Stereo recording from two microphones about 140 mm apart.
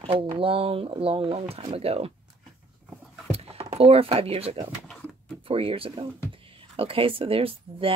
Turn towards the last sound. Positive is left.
turn(degrees=-40)  # may be behind; listen again after turning